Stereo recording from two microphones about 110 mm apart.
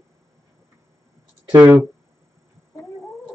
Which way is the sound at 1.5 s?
15° right (ahead or behind).